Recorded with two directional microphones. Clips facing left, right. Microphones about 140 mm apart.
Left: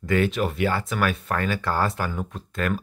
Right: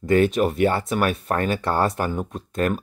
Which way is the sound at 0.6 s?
30° right (ahead or behind).